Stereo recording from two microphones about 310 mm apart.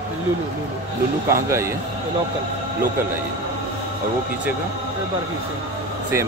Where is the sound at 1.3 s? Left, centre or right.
Centre.